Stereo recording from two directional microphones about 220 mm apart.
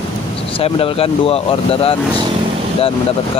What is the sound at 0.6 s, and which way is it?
Speech, 25° left (ahead or behind).